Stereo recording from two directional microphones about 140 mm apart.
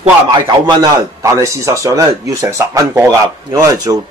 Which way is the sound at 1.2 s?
20° right (ahead or behind).